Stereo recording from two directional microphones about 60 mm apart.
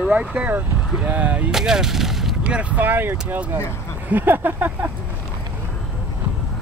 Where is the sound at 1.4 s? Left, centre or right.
Centre.